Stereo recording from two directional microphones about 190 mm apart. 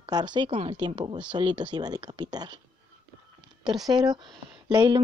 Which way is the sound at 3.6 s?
20° right (ahead or behind).